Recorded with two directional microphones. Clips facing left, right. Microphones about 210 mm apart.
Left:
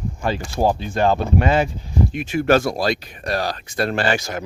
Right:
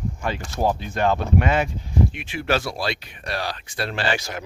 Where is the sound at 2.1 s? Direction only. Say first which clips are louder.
Left 7 dB; 45° left (ahead or behind).